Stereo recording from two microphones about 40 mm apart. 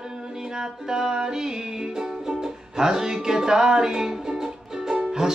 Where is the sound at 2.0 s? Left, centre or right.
Centre.